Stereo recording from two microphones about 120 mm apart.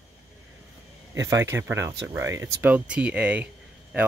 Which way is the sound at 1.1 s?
25° right (ahead or behind).